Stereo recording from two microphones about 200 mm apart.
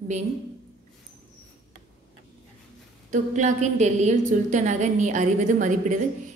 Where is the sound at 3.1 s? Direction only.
40° right (ahead or behind).